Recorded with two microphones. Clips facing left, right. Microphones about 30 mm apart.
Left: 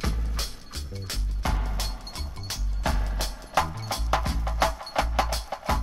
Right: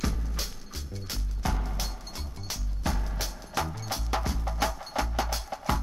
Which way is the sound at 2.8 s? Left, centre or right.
Left.